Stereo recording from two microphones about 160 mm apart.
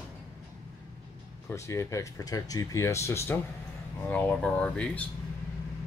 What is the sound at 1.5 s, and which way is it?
Speech, 20° left (ahead or behind).